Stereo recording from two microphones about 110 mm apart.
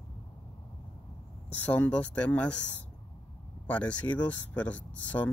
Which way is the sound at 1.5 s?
15° left (ahead or behind).